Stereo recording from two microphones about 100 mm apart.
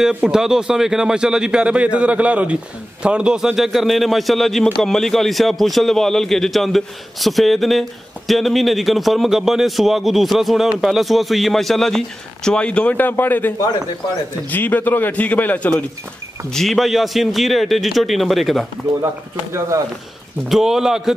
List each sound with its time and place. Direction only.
0.0 s a man's voice: 10° right (ahead or behind); by 15.7 s 15° left (ahead or behind)
16.4 s a man's voice: 5° left (ahead or behind)
20.4 s a man's voice: 5° right (ahead or behind)